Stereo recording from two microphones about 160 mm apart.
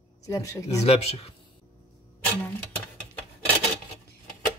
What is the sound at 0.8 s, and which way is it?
Speech, 40° left (ahead or behind).